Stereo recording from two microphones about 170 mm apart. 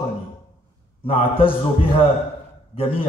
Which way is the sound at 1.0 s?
30° left (ahead or behind).